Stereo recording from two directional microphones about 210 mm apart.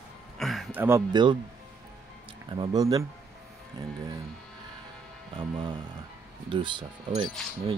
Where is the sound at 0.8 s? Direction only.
15° right (ahead or behind).